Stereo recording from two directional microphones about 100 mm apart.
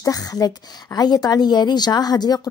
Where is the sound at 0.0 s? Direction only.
40° left (ahead or behind).